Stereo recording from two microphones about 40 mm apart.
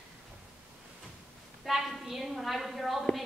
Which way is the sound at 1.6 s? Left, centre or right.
Centre.